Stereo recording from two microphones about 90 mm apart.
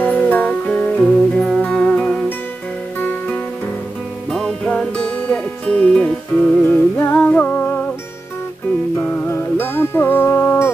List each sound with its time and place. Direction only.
0.0 s music: 15° left (ahead or behind)
4.3 s music: 5° left (ahead or behind)
7.0 s music: 20° left (ahead or behind)
9.0 s music: 20° left (ahead or behind)